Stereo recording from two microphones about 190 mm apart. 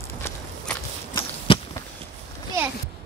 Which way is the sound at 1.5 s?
25° left (ahead or behind).